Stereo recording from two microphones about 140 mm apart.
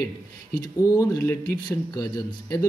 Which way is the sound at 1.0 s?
10° left (ahead or behind).